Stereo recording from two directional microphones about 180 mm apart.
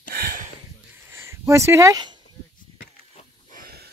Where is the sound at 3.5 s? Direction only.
55° right (ahead or behind).